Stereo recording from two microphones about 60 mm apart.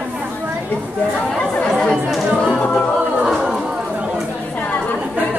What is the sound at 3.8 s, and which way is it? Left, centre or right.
Chatter, right.